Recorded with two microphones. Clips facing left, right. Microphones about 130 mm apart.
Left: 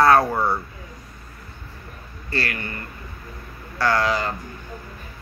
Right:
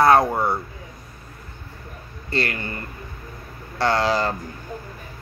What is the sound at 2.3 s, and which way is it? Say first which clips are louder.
Speech: right 2 dB; 25° right (ahead or behind).